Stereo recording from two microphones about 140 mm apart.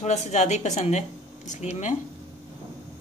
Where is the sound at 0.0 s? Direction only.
55° left (ahead or behind).